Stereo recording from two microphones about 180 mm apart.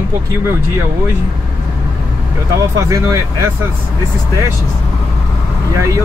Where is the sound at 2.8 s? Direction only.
15° right (ahead or behind).